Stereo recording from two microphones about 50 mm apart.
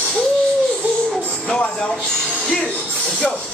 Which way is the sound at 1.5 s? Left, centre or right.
Left.